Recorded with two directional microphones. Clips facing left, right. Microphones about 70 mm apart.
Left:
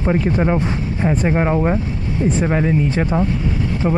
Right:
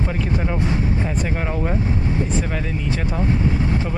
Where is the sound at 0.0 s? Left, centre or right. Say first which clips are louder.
Left 6 dB; left.